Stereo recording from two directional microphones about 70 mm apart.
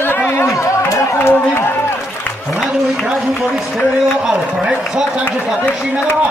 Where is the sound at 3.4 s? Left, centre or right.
Centre.